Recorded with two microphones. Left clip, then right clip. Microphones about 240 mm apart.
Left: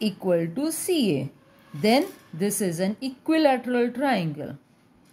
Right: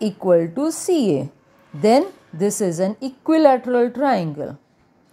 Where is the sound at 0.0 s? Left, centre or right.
Centre.